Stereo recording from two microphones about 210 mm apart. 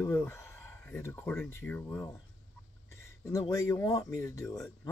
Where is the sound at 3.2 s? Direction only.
15° left (ahead or behind).